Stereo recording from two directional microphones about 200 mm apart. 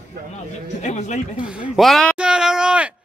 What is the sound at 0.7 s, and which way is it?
Speech, 35° left (ahead or behind).